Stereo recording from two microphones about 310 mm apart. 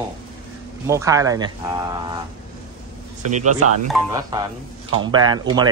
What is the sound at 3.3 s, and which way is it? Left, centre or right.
Speech, right.